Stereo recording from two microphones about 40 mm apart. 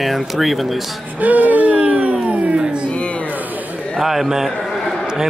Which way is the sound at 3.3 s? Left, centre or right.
Right.